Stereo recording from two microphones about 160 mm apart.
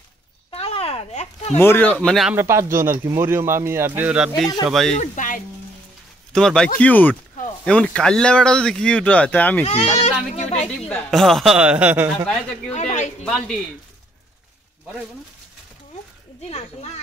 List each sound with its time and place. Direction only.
0.5 s a sound: 35° left (ahead or behind)
1.6 s speech: 15° left (ahead or behind)
2.2 s speech: 15° right (ahead or behind)
4.6 s a man's voice: centre (ahead or behind)
4.9 s speech: 50° left (ahead or behind)
6.3 s a man's voice: 5° left (ahead or behind)
9.7 s speech: 45° left (ahead or behind)
10.7 s a man's voice: 5° left (ahead or behind)
12.7 s speech: 45° left (ahead or behind)
13.2 s a man's voice: 5° left (ahead or behind)
16.4 s speech: 40° left (ahead or behind)